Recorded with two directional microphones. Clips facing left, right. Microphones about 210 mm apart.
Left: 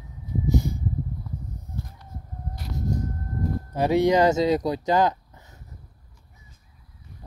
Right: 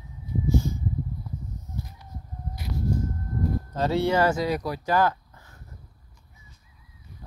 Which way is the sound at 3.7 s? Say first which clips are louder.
Left 5 dB; 15° left (ahead or behind).